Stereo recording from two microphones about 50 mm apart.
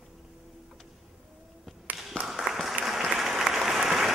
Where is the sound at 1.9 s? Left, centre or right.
Right.